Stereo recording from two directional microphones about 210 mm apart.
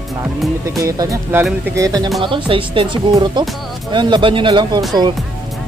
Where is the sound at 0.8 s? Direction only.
15° right (ahead or behind).